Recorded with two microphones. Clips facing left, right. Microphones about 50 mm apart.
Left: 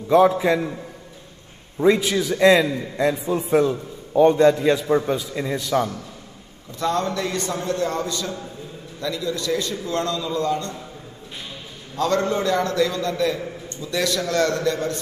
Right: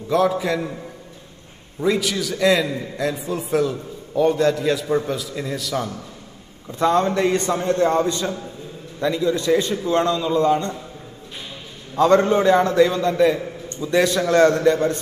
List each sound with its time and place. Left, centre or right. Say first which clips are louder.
1.8 s a man's voice: left 3 dB; centre
6.7 s a man's voice: right 5 dB; right
12.0 s a man's voice: right 6 dB; right